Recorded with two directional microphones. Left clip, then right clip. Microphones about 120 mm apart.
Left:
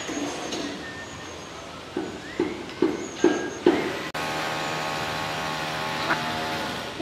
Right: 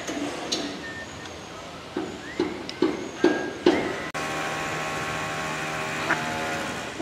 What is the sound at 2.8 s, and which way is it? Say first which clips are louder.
Horse: left 1 dB; 40° right (ahead or behind).